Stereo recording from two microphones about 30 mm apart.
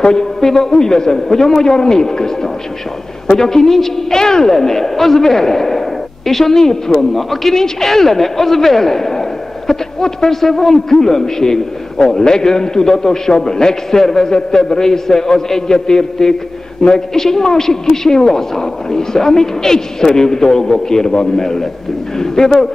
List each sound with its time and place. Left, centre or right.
0.4 s a man's voice: centre
0.7 s a man's voice: left
3.3 s a man's voice: centre
4.1 s a man's voice: left